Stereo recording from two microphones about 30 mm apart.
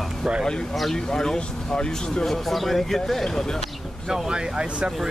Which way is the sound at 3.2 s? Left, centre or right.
Centre.